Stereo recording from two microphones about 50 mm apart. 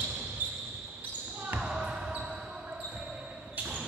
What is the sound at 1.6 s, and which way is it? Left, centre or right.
Basketball bounce, centre.